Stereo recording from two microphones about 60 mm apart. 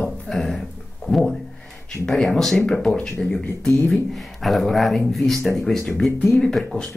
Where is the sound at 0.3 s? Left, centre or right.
Centre.